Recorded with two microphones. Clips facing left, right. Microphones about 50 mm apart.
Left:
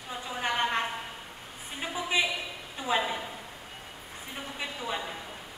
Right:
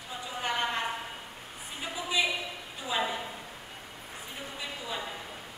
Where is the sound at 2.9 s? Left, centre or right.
Left.